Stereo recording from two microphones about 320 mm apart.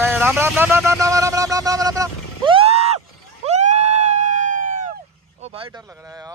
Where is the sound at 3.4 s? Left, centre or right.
Right.